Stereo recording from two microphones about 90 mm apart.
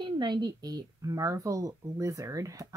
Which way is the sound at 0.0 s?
55° right (ahead or behind).